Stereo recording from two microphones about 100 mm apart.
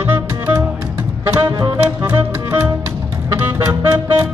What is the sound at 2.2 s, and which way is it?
Music, 25° right (ahead or behind).